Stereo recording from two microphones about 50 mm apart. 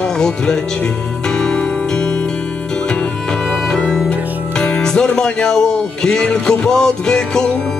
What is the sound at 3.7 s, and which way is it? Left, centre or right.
Music, centre.